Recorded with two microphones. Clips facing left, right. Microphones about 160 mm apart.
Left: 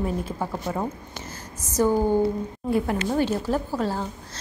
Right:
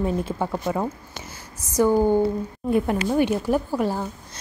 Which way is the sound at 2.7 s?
20° right (ahead or behind).